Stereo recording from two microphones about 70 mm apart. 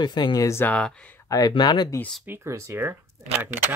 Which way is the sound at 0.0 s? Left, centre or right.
Left.